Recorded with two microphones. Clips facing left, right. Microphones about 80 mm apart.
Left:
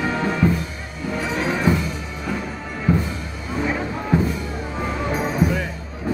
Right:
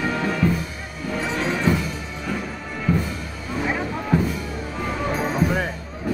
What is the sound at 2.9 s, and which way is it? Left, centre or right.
Music, left.